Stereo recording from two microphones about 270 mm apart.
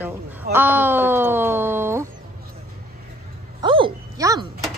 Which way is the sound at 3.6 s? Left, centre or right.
Centre.